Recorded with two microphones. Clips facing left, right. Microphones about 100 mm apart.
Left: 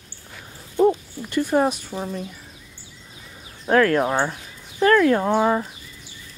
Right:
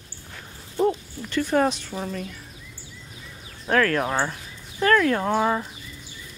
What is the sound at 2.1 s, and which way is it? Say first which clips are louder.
Speech: left 2 dB; 20° left (ahead or behind).